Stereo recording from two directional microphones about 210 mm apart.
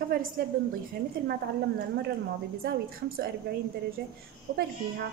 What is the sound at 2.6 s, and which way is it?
A woman's voice, 45° right (ahead or behind).